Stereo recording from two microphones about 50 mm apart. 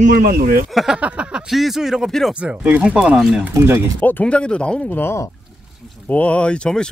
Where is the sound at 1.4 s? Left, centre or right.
Centre.